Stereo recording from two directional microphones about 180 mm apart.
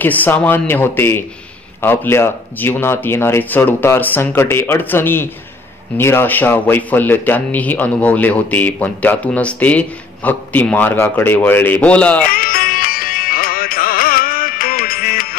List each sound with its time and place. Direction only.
0.0 s speech: 10° left (ahead or behind)
12.3 s music: 55° left (ahead or behind)